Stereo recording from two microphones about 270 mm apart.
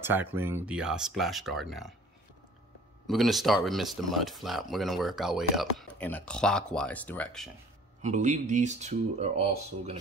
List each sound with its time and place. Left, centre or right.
0.0 s speech: centre
3.1 s speech: centre
8.0 s speech: right